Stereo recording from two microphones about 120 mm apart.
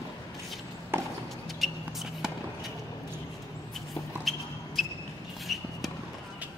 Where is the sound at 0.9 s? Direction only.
20° right (ahead or behind).